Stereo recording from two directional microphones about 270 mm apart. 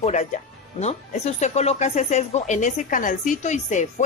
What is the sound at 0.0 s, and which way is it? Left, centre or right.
A woman's voice, left.